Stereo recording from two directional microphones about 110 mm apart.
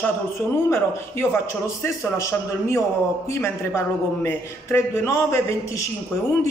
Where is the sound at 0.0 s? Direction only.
20° left (ahead or behind).